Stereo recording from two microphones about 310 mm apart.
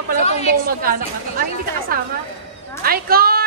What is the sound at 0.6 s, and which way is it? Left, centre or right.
Speech, right.